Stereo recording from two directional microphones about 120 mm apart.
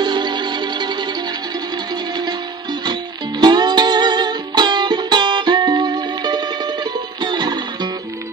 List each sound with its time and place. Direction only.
0.0 s music: 40° right (ahead or behind)
2.8 s music: 35° right (ahead or behind)